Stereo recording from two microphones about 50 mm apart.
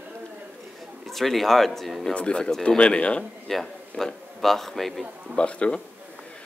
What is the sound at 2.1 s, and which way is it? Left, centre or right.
Speech, left.